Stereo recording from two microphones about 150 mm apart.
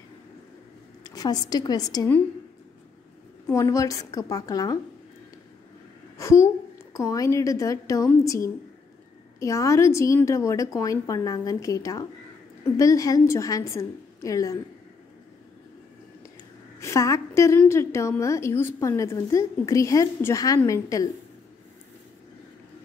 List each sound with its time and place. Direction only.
1.0 s a woman's voice: 25° left (ahead or behind)
3.4 s a woman's voice: 20° left (ahead or behind)
6.1 s a woman's voice: 20° left (ahead or behind)
16.8 s a sound: 20° left (ahead or behind)
17.6 s a woman's voice: 20° left (ahead or behind)